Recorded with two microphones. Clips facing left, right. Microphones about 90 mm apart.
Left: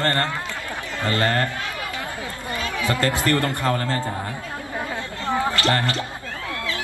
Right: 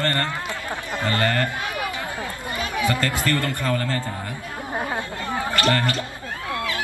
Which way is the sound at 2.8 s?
25° left (ahead or behind).